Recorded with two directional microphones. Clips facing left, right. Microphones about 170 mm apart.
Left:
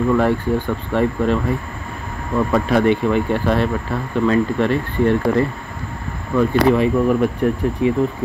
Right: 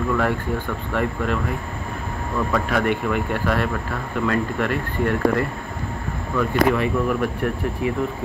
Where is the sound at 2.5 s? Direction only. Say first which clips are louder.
Left 6 dB; 30° left (ahead or behind).